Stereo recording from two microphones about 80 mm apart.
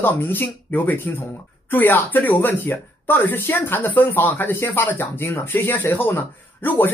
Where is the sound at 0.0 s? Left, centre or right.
Left.